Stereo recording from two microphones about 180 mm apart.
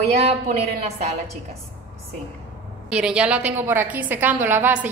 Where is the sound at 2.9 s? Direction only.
5° right (ahead or behind).